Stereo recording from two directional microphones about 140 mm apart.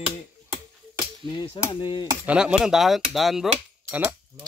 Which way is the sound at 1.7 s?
30° left (ahead or behind).